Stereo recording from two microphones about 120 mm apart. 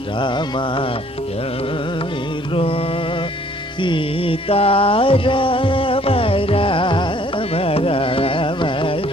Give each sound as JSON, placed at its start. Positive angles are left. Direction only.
{"t": 0.2, "sound": "carnatic music", "side_deg": 40}
{"t": 2.5, "sound": "mantra", "side_deg": 50}
{"t": 3.8, "sound": "music", "side_deg": 45}